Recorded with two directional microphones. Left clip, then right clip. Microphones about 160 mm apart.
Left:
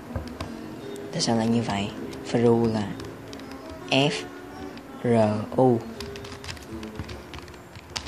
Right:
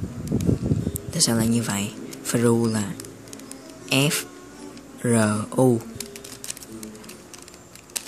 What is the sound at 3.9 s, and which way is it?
Speech, 65° right (ahead or behind).